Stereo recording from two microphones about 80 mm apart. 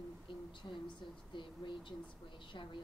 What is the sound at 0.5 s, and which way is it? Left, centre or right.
A woman's voice, left.